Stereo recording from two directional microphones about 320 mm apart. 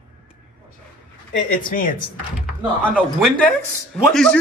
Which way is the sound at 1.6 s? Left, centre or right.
Left.